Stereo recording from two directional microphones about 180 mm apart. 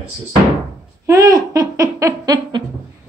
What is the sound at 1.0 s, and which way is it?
Speech, 20° right (ahead or behind).